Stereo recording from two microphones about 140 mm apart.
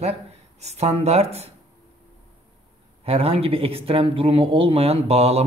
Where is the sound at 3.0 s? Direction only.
45° right (ahead or behind).